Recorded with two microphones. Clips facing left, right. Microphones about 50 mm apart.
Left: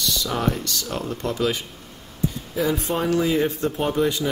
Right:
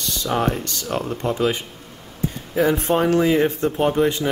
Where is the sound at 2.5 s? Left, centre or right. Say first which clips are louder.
Right 6 dB; right.